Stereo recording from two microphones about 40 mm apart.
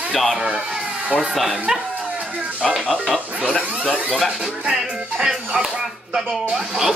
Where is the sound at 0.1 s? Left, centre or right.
Centre.